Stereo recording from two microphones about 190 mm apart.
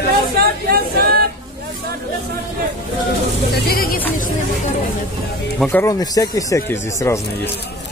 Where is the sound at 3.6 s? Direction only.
50° left (ahead or behind).